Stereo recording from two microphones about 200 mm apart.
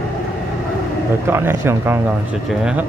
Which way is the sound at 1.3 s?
10° right (ahead or behind).